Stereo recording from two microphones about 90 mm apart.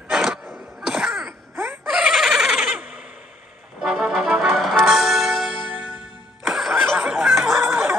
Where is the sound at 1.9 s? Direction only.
5° right (ahead or behind).